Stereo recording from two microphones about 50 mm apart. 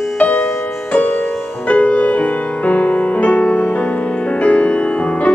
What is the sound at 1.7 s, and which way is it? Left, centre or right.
Music, left.